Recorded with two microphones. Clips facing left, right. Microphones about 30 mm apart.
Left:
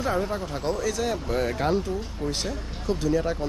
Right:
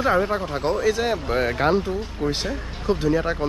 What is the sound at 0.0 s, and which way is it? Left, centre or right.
Speech, right.